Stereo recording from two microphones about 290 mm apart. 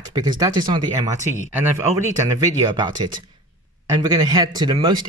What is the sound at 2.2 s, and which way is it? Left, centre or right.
Speech, centre.